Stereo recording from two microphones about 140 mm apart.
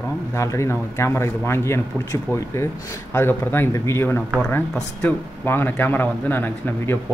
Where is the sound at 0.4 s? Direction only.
20° left (ahead or behind).